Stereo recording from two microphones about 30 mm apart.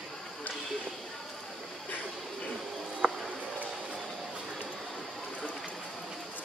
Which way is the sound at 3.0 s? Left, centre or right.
Right.